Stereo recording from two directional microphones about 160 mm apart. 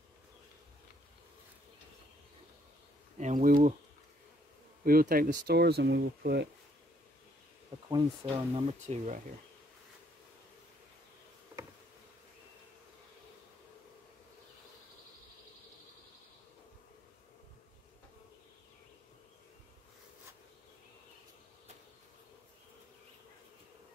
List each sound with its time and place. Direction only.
3.2 s speech: 50° right (ahead or behind)
4.8 s speech: 65° right (ahead or behind)
5.5 s speech: 90° right
7.9 s speech: 30° right (ahead or behind)
8.8 s speech: 50° right (ahead or behind)